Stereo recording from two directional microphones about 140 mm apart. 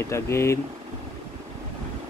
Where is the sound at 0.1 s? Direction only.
20° left (ahead or behind).